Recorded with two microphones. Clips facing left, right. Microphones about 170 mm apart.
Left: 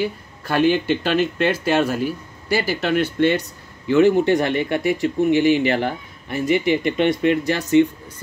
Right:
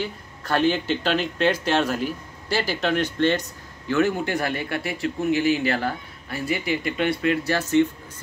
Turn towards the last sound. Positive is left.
turn(degrees=15)  # may be behind; listen again after turning